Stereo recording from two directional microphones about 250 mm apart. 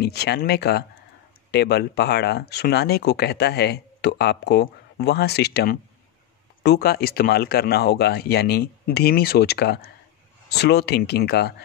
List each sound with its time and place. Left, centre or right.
0.0 s speech: left